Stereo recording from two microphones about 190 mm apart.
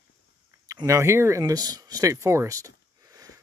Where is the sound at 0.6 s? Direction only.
20° right (ahead or behind).